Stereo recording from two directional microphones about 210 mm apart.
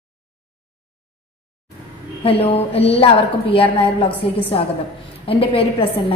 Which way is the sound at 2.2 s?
25° left (ahead or behind).